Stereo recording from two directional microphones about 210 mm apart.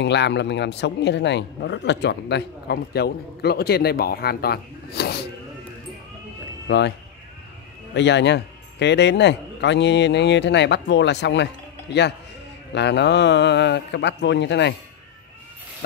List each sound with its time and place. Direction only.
0.0 s a man's voice: 55° left (ahead or behind)
6.7 s a man's voice: 60° left (ahead or behind)
7.9 s a man's voice: 55° left (ahead or behind)
12.7 s a man's voice: 55° left (ahead or behind)